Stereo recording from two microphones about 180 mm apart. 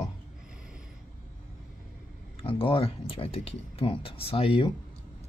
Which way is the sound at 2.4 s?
30° left (ahead or behind).